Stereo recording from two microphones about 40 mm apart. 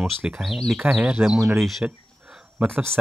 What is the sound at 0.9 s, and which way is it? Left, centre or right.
Speech, right.